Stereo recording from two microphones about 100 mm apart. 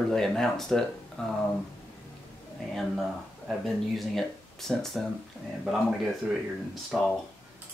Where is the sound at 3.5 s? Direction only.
Centre (ahead or behind).